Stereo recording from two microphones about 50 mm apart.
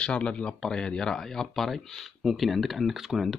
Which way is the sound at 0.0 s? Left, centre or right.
Left.